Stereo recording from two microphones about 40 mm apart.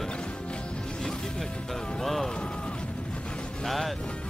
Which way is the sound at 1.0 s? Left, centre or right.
Centre.